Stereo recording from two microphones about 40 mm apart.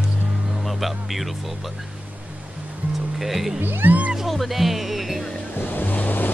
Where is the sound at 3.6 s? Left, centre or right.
Right.